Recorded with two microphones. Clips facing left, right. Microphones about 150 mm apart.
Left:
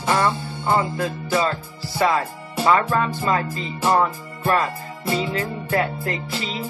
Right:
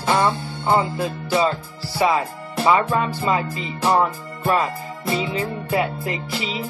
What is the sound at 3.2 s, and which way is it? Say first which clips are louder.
Music: right 1 dB; 10° right (ahead or behind).